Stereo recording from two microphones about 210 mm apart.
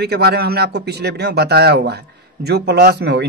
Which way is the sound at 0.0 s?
50° right (ahead or behind).